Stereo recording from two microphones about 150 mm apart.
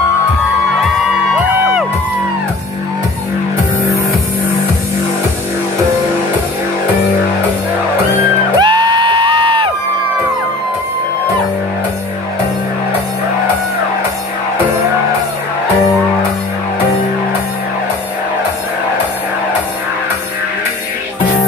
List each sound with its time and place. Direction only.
1.3 s music: 5° right (ahead or behind)
8.5 s music: 30° right (ahead or behind)